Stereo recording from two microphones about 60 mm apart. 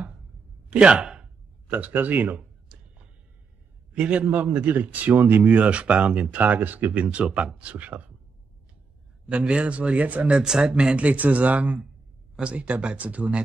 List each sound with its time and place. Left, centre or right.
0.7 s speech: centre
1.7 s a man's voice: right
2.3 s a sound: centre
3.9 s a man's voice: centre
7.7 s a man's voice: right
9.3 s a man's voice: centre
10.4 s a man's voice: centre